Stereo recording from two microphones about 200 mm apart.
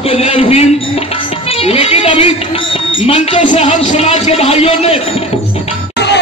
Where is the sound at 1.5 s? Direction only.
30° left (ahead or behind).